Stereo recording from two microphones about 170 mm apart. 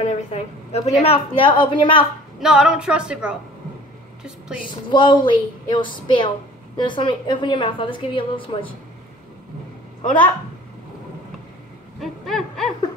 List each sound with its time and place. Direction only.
0.0 s a sound: 40° left (ahead or behind)
1.0 s a woman's voice: 35° left (ahead or behind)
2.4 s speech: 5° right (ahead or behind)
4.8 s a woman's voice: 30° left (ahead or behind)
12.0 s hoot: centre (ahead or behind)